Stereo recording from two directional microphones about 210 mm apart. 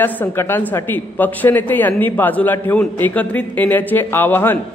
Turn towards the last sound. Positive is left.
turn(degrees=10)  # may be behind; listen again after turning